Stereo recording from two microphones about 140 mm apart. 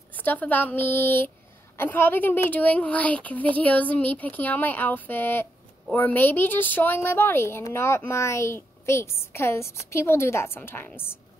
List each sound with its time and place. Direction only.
0.1 s a woman's voice: 10° left (ahead or behind)